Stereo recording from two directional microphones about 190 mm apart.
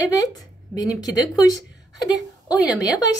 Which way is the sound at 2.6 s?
20° left (ahead or behind).